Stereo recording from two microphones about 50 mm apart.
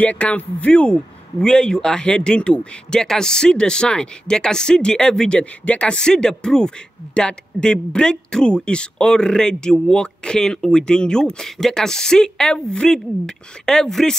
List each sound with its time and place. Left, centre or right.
0.0 s speech: left; by 5.4 s centre
5.4 s speech: left